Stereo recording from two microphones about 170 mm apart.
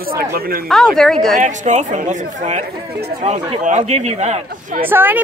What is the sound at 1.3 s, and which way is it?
Speech, 45° right (ahead or behind).